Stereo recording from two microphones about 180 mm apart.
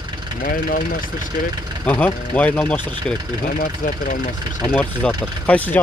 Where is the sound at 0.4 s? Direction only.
55° left (ahead or behind).